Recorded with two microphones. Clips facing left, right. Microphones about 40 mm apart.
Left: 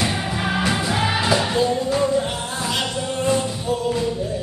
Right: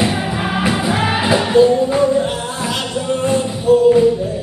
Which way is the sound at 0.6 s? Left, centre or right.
Centre.